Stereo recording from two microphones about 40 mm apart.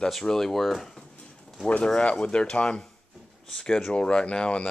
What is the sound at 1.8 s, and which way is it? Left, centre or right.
Speech, left.